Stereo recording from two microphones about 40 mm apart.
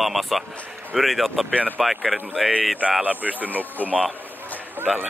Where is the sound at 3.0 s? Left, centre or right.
Right.